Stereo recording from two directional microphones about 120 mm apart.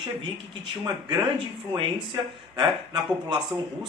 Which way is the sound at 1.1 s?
40° right (ahead or behind).